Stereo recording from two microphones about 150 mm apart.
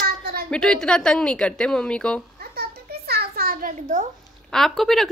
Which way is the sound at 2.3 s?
90° right.